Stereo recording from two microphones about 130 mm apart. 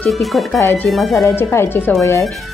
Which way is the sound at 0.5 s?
20° left (ahead or behind).